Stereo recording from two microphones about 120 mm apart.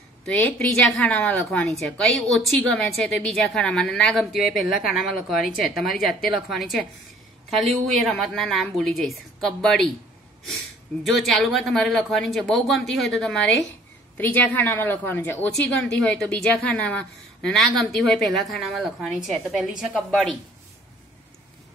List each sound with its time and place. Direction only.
0.3 s a woman's voice: 5° left (ahead or behind)
11.1 s a woman's voice: centre (ahead or behind)